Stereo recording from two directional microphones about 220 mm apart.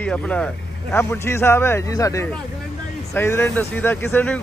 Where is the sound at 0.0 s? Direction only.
5° left (ahead or behind).